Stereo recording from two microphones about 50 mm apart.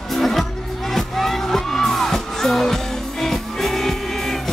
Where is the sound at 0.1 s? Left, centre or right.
Centre.